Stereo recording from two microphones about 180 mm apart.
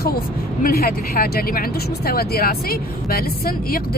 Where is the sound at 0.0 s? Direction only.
55° left (ahead or behind).